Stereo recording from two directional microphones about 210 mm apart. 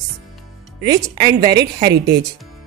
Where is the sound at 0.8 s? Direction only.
20° right (ahead or behind).